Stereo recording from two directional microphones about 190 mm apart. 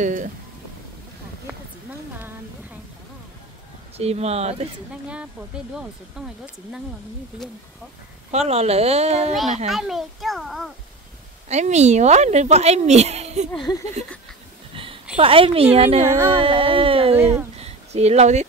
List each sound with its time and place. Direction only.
0.0 s speech: 45° right (ahead or behind)
4.0 s speech: 35° right (ahead or behind)
5.0 s speech: 5° right (ahead or behind)
8.3 s speech: 35° right (ahead or behind)
9.7 s speech: centre (ahead or behind)
11.4 s speech: 35° right (ahead or behind)
15.1 s music: 30° right (ahead or behind)
15.7 s speech: 30° right (ahead or behind)
16.0 s music: 15° right (ahead or behind)
16.3 s music: 30° right (ahead or behind)
17.2 s music: 10° right (ahead or behind)
17.6 s a sound: 35° right (ahead or behind)